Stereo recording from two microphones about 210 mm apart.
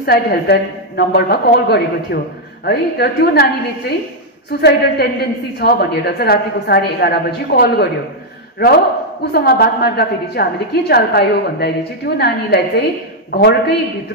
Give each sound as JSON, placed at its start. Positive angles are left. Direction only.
{"t": 0.0, "sound": "a woman's voice", "side_deg": 50}
{"t": 9.2, "sound": "a woman's voice", "side_deg": 50}